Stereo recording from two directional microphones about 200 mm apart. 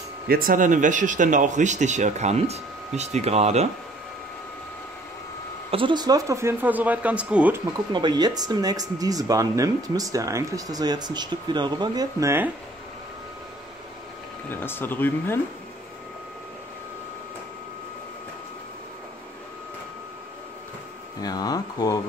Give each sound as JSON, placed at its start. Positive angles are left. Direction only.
{"t": 0.3, "sound": "speech", "side_deg": -45}
{"t": 5.7, "sound": "speech", "side_deg": -25}
{"t": 7.9, "sound": "speech", "side_deg": -20}
{"t": 14.5, "sound": "speech", "side_deg": 10}
{"t": 21.2, "sound": "speech", "side_deg": 20}